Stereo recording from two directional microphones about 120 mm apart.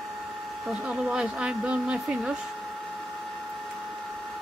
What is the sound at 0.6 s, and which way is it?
Speech, 5° right (ahead or behind).